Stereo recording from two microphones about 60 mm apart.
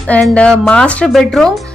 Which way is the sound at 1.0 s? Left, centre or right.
Centre.